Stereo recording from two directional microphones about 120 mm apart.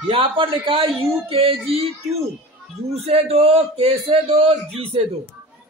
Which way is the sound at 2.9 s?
55° right (ahead or behind).